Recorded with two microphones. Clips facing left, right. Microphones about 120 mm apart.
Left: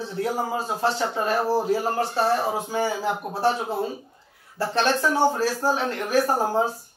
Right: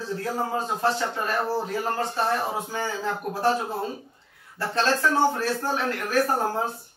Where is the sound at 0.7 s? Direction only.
30° left (ahead or behind).